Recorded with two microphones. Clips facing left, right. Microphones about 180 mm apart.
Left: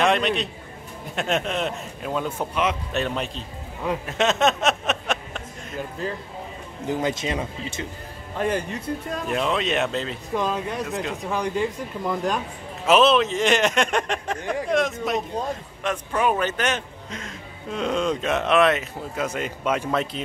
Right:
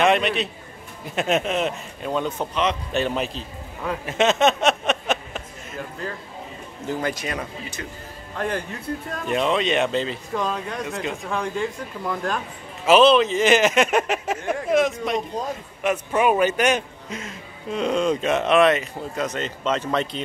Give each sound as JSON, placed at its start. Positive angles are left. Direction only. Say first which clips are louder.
{"t": 0.0, "sound": "a man's voice", "louder": "right 2 dB", "side_deg": 0}
{"t": 6.9, "sound": "speech", "louder": "left 2 dB", "side_deg": 20}
{"t": 8.4, "sound": "speech", "louder": "left 2 dB", "side_deg": 0}
{"t": 12.8, "sound": "speech", "louder": "right 3 dB", "side_deg": 0}